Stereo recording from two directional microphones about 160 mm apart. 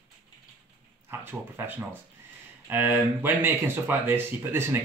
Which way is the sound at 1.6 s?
15° right (ahead or behind).